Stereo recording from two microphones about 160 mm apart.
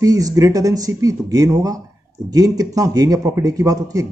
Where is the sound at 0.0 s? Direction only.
20° right (ahead or behind).